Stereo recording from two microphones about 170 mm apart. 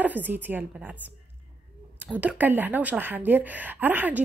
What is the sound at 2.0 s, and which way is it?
Speech, 10° right (ahead or behind).